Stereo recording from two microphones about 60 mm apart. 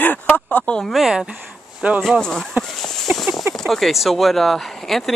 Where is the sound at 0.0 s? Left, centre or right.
Left.